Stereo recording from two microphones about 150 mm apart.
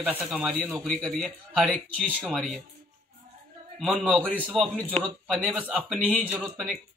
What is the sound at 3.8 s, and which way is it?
A man's voice, centre (ahead or behind).